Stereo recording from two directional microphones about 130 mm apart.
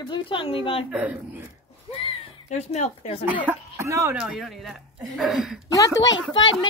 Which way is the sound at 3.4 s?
20° right (ahead or behind).